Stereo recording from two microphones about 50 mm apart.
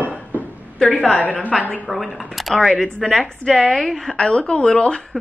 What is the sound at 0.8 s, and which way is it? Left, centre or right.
Speech, centre.